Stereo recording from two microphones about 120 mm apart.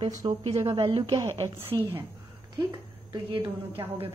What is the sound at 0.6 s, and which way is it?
Speech, 30° right (ahead or behind).